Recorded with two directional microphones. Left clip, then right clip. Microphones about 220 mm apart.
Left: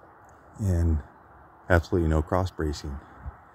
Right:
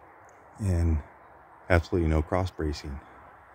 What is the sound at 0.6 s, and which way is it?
Speech, 10° left (ahead or behind).